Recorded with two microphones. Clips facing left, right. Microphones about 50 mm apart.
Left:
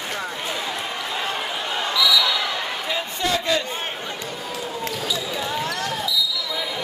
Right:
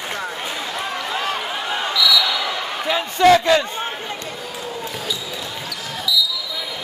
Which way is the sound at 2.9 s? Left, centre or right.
Right.